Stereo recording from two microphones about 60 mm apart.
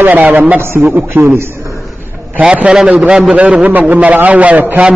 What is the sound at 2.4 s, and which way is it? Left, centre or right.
A man's voice, centre.